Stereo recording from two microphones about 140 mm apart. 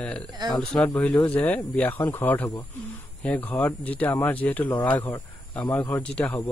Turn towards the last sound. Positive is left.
turn(degrees=10)  # may be behind; listen again after turning